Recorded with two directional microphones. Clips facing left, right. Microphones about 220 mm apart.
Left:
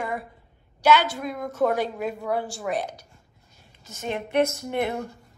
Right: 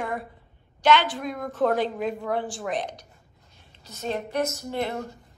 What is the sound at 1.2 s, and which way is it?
Speech, 5° left (ahead or behind).